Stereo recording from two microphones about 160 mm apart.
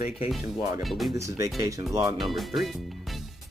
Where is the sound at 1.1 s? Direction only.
20° right (ahead or behind).